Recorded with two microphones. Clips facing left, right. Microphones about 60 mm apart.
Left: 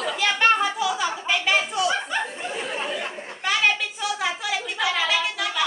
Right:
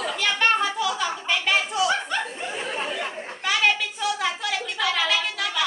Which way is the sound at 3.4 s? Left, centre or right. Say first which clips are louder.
Even; centre.